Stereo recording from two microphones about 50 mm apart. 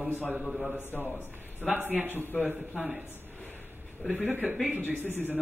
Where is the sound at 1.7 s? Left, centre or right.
Right.